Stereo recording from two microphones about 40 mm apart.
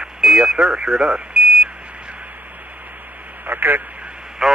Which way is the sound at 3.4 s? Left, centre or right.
Right.